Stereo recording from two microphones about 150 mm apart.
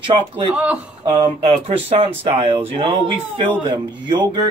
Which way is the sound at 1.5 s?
40° right (ahead or behind).